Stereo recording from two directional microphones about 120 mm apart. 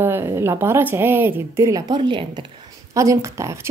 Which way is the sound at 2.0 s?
40° right (ahead or behind).